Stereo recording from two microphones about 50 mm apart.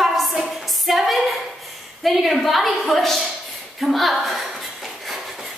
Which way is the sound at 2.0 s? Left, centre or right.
Centre.